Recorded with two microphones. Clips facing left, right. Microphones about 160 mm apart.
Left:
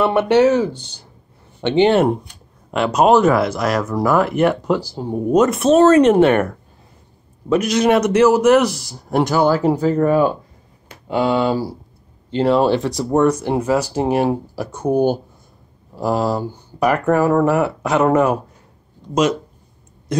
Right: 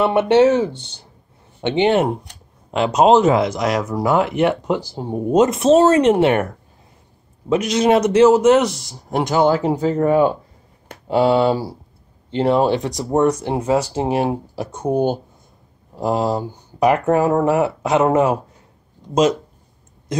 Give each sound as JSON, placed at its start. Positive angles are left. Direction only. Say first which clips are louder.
{"t": 0.0, "sound": "speech", "louder": "even", "side_deg": -25}